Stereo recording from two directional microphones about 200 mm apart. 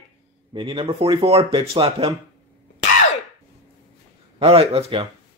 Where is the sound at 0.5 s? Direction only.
25° right (ahead or behind).